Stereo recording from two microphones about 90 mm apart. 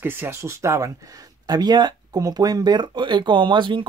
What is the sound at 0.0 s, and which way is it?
Speech, 25° right (ahead or behind).